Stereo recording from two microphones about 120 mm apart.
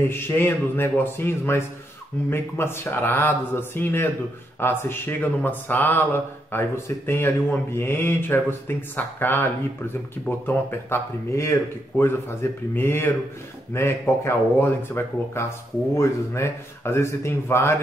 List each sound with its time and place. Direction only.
0.1 s speech: 20° left (ahead or behind)